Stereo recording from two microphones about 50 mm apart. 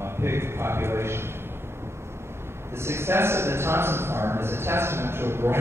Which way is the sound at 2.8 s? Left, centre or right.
Right.